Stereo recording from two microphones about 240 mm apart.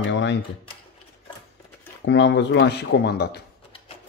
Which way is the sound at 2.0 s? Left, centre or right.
Left.